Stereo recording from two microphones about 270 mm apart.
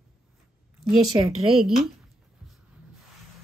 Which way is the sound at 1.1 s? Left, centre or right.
Centre.